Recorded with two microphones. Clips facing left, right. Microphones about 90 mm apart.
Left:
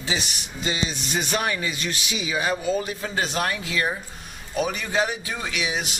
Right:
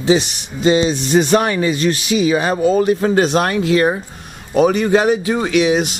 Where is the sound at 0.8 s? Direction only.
35° right (ahead or behind); by 5.9 s 65° right (ahead or behind).